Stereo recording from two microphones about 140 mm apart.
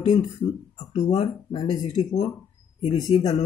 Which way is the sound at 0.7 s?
60° left (ahead or behind).